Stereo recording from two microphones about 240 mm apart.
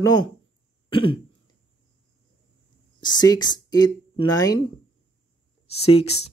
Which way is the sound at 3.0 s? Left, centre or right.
Centre.